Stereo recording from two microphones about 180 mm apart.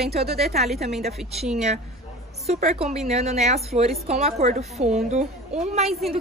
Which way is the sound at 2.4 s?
35° right (ahead or behind).